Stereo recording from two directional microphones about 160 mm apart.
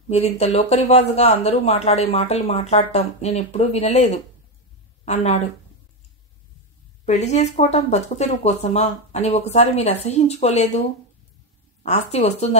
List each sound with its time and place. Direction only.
0.1 s a woman's voice: 40° left (ahead or behind)
7.1 s speech: 45° left (ahead or behind)
11.8 s speech: 45° left (ahead or behind)